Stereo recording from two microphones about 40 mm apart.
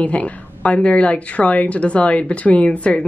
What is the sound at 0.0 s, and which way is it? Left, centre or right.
A woman's voice, left.